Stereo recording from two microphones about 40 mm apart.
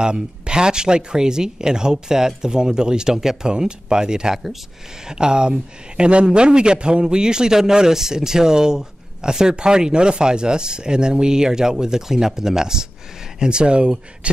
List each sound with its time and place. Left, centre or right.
0.0 s speech: right